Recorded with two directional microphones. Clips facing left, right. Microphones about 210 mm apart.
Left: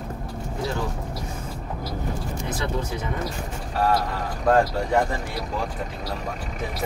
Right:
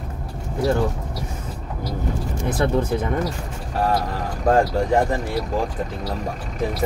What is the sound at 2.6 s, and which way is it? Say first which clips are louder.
Speech: right 10 dB; 55° right (ahead or behind).